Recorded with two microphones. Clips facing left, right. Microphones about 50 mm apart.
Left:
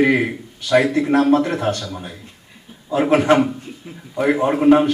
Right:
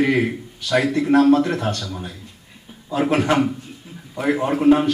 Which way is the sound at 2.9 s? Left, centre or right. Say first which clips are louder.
Left 4 dB; centre.